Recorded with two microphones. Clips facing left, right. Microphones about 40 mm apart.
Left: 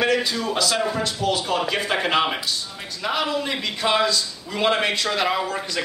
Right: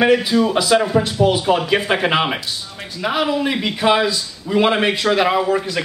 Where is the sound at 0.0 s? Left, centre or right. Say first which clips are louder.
Right 7 dB; centre.